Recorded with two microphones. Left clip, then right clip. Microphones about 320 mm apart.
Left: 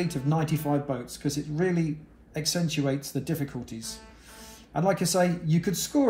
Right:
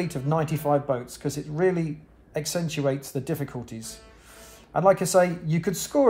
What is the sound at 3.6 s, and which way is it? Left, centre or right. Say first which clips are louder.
Speech: left 1 dB; centre.